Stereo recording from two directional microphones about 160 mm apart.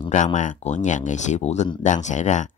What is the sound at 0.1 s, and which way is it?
Speech, 50° left (ahead or behind).